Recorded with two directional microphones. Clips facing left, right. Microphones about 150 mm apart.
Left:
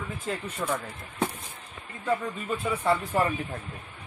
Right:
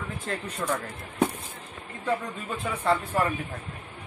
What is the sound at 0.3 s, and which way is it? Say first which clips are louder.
Speech: even; centre (ahead or behind).